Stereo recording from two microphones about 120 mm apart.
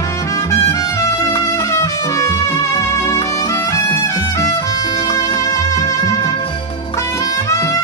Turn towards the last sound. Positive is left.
turn(degrees=25)  # may be behind; listen again after turning